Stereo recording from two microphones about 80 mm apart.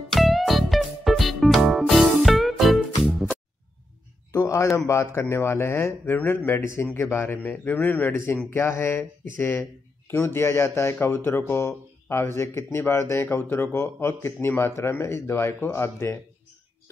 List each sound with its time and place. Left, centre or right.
0.1 s music: centre
4.3 s a sound: left
4.7 s a man's voice: left